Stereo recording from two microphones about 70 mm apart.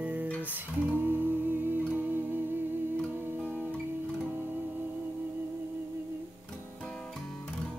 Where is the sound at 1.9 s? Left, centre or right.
Right.